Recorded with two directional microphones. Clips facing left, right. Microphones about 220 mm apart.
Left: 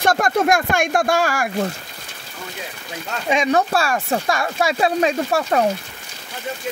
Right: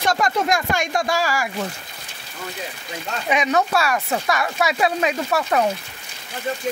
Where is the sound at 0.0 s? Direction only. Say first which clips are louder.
Left 3 dB; 55° left (ahead or behind).